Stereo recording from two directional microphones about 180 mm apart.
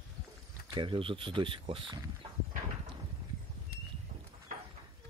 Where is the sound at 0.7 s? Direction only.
25° right (ahead or behind).